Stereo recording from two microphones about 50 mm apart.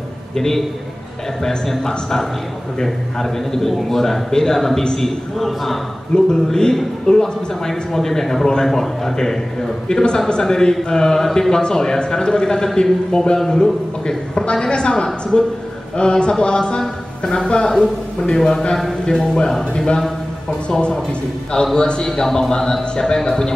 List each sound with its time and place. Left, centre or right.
0.3 s a man's voice: centre